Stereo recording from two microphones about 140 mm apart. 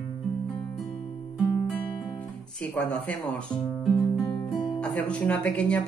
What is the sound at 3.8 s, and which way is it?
Music, centre (ahead or behind).